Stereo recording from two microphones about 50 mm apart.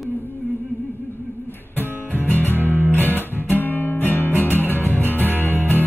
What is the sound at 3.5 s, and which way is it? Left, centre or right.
Music, left.